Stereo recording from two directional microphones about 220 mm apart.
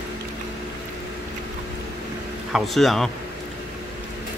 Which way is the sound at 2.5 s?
Centre (ahead or behind).